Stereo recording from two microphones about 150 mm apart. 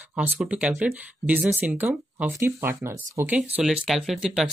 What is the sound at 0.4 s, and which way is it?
Speech, 5° right (ahead or behind).